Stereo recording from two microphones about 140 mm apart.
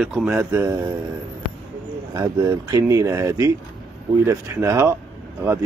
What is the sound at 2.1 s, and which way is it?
Speech, 25° right (ahead or behind).